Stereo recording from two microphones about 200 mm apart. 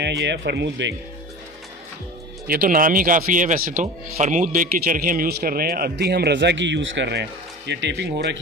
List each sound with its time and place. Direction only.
0.0 s speech: 55° right (ahead or behind)
2.4 s speech: 45° right (ahead or behind)